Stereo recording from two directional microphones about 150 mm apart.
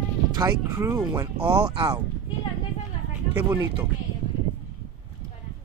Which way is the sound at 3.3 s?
15° right (ahead or behind).